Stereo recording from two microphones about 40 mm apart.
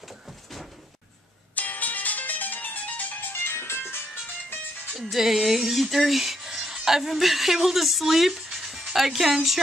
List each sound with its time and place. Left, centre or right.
1.5 s music: left
3.4 s music: left
5.1 s a sound: centre
8.9 s speech: centre